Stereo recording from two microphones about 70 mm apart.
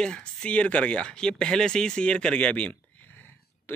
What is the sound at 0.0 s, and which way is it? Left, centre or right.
Speech, centre.